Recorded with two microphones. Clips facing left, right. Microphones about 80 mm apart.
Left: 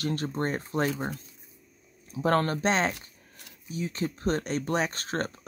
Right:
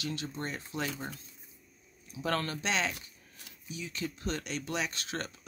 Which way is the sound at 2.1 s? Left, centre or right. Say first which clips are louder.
Left 8 dB; left.